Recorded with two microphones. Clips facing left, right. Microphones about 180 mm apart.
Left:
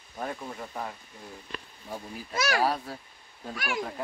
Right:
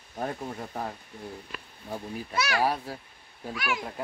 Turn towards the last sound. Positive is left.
turn(degrees=45)  # may be behind; listen again after turning